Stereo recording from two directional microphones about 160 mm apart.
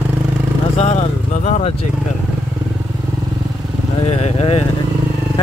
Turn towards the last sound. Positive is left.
turn(degrees=40)  # may be behind; listen again after turning